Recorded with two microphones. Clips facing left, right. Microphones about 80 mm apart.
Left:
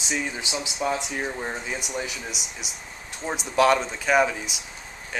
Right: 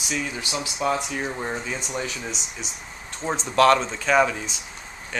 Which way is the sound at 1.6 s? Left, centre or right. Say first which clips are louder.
Right 1 dB; centre.